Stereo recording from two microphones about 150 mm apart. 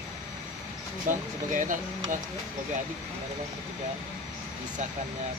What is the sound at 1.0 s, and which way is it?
Speech, 60° right (ahead or behind).